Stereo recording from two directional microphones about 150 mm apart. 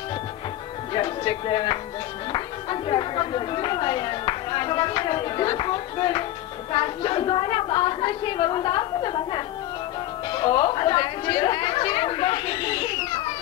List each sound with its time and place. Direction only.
0.9 s a woman's voice: 35° left (ahead or behind)